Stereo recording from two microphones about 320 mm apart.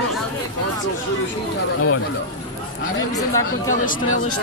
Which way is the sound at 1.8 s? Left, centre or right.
Left.